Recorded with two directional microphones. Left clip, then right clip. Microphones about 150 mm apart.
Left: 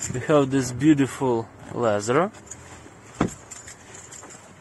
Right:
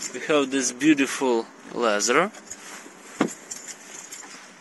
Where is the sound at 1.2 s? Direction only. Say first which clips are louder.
Right 1 dB; 15° left (ahead or behind).